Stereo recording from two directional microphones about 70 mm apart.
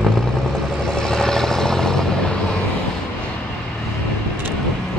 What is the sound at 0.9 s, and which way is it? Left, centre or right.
Vehicle, centre.